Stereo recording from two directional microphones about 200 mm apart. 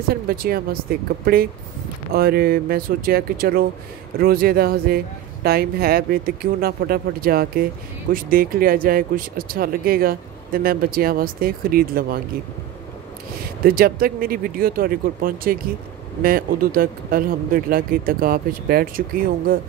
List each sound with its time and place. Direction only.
0.1 s speech: 50° right (ahead or behind)
13.7 s speech: 45° right (ahead or behind)